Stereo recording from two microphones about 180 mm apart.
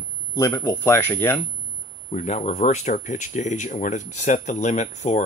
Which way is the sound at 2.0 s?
40° left (ahead or behind).